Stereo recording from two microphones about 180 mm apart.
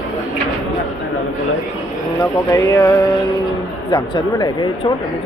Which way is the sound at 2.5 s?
15° left (ahead or behind).